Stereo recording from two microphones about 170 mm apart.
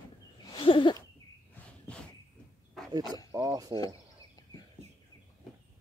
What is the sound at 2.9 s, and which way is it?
Speech, 20° right (ahead or behind).